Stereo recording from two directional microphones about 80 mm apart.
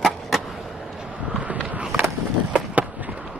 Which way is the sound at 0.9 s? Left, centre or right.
Centre.